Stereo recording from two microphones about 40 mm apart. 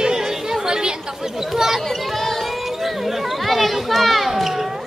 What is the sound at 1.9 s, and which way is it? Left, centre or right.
Chatter, centre.